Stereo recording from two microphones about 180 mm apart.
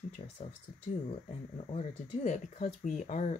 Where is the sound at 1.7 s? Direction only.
40° left (ahead or behind).